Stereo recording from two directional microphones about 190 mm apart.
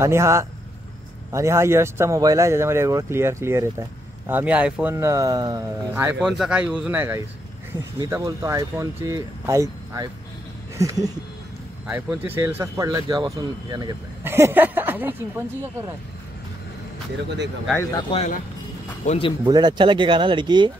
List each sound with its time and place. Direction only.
0.0 s speech: 15° right (ahead or behind)
18.1 s speech: 35° left (ahead or behind)
19.4 s speech: 25° right (ahead or behind)